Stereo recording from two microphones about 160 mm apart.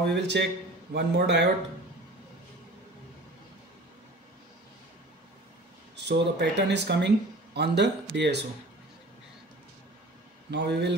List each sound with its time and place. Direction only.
0.0 s speech: 90° right
5.9 s speech: 90° right
10.5 s speech: 90° right